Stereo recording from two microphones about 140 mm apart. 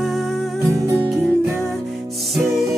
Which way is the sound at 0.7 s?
20° right (ahead or behind).